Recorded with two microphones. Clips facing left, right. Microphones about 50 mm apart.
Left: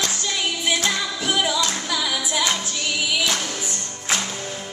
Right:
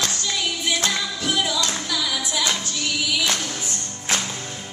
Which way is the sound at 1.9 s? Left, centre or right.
Centre.